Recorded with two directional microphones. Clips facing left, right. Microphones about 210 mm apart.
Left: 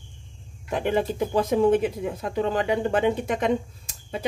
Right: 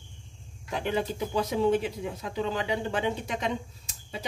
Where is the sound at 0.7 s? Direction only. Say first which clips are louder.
Left 5 dB; 50° left (ahead or behind).